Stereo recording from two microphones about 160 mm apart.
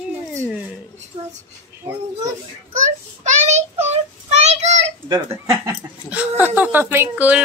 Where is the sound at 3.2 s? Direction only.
45° right (ahead or behind).